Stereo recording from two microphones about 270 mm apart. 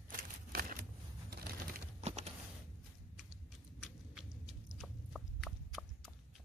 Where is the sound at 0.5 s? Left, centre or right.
Right.